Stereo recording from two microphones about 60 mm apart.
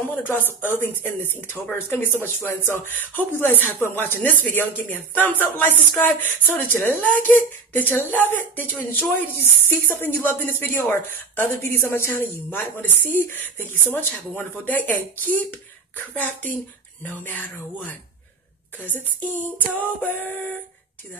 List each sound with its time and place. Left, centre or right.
0.1 s speech: left
19.8 s speech: left